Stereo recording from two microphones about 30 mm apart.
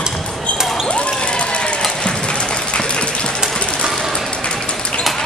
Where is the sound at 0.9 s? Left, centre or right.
Left.